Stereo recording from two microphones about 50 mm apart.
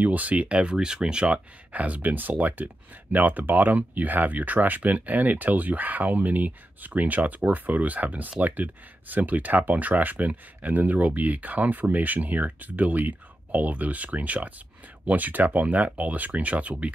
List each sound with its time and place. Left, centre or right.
0.0 s speech: right
1.7 s speech: right